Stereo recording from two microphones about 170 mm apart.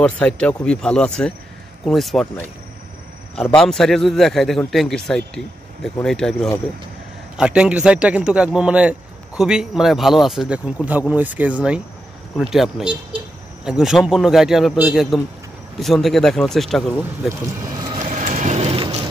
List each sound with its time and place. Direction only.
0.0 s speech: 5° left (ahead or behind)
3.5 s a man's voice: centre (ahead or behind)
17.8 s vehicle: 45° right (ahead or behind)